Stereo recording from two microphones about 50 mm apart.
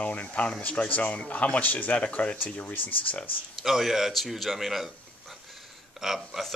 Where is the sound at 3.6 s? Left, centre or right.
Centre.